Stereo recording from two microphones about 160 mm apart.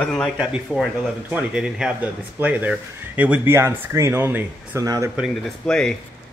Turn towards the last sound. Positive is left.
turn(degrees=5)  # may be behind; listen again after turning